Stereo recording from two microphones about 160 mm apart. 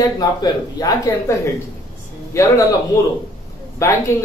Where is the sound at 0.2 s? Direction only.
25° left (ahead or behind).